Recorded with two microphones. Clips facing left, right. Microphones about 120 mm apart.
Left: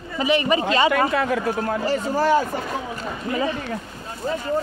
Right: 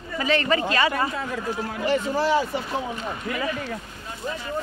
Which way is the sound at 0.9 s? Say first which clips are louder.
Left 7 dB; 80° left.